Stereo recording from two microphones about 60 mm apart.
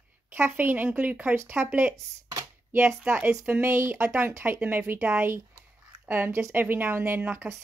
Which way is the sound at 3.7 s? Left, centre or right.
Right.